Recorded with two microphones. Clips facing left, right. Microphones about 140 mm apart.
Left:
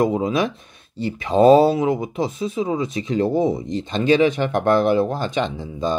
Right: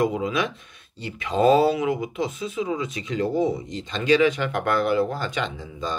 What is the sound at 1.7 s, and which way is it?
Speech, 25° left (ahead or behind).